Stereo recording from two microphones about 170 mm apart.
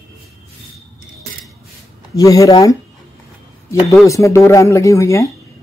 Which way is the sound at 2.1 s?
20° left (ahead or behind).